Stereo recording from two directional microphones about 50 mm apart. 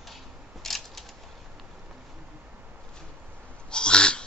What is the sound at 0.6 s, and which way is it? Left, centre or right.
Scissors, centre.